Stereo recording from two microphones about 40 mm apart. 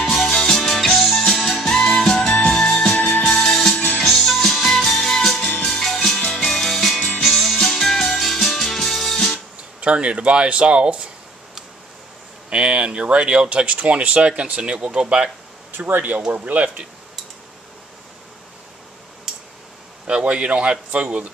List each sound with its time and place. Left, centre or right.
0.0 s music: centre; by 2.5 s left
2.5 s music: centre
9.8 s speech: right
12.4 s speech: right
15.7 s speech: right
20.1 s speech: right